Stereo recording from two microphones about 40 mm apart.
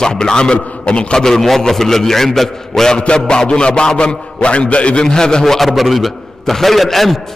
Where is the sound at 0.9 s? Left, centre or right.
Left.